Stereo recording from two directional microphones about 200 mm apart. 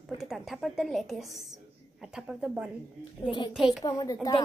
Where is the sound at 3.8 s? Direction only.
20° left (ahead or behind).